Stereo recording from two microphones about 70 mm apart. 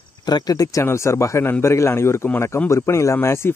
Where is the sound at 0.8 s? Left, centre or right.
Left.